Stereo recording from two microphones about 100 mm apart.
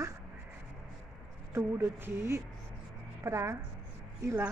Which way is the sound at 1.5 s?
25° right (ahead or behind).